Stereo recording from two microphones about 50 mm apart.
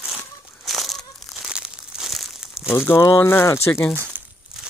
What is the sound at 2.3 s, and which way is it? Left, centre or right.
Crumpling, centre.